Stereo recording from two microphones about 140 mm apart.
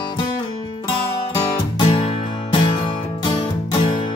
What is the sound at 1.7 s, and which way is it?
Music, 40° left (ahead or behind).